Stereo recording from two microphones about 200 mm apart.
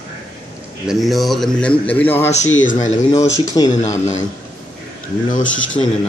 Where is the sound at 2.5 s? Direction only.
75° left (ahead or behind).